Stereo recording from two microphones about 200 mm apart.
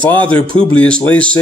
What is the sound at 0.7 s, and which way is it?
Speech, 5° left (ahead or behind).